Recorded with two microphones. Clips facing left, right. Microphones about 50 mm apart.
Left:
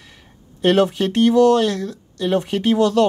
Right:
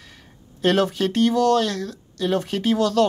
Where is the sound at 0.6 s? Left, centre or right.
Centre.